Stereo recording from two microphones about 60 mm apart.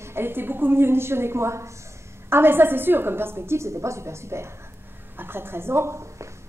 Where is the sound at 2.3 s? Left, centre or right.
Right.